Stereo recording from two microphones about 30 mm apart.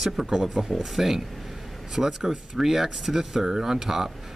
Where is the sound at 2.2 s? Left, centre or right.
Centre.